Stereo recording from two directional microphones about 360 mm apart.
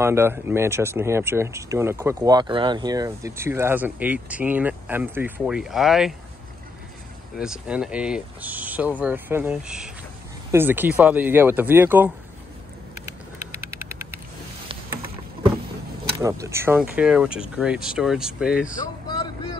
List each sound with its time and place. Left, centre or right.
0.0 s speech: centre
7.3 s speech: centre
13.8 s vehicle: right
16.2 s speech: centre
19.0 s vehicle: centre